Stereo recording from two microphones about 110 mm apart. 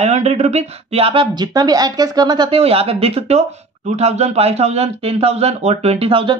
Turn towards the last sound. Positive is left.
turn(degrees=-55)  # may be behind; listen again after turning